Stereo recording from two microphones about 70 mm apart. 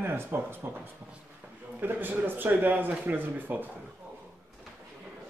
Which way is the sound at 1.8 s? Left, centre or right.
Right.